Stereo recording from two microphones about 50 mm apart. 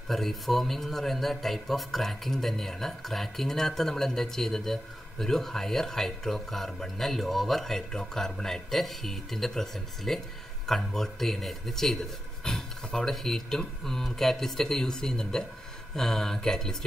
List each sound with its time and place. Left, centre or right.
0.1 s a man's voice: centre